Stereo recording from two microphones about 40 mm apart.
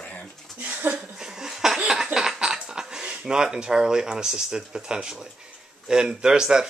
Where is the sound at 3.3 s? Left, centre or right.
Centre.